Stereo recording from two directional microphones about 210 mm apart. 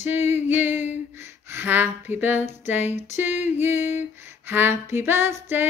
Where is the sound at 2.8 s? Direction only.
35° left (ahead or behind).